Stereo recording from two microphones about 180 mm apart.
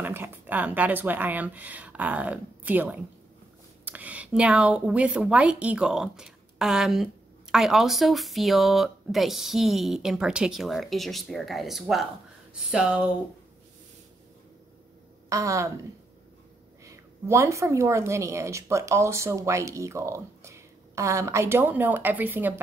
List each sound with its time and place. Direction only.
0.0 s a woman's voice: 10° right (ahead or behind)
15.2 s a woman's voice: 15° right (ahead or behind)
16.8 s a woman's voice: 15° right (ahead or behind)